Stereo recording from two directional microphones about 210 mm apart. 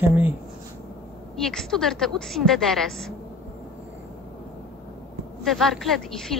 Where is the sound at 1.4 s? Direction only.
Centre (ahead or behind).